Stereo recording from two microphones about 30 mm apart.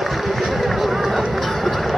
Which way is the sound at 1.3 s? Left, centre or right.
Centre.